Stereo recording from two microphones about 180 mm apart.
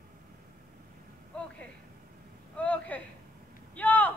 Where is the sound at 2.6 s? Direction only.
10° left (ahead or behind).